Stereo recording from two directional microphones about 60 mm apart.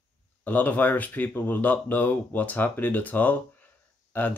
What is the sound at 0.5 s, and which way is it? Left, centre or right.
Speech, left.